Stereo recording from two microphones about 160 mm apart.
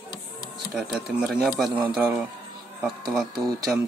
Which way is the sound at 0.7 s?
Centre (ahead or behind).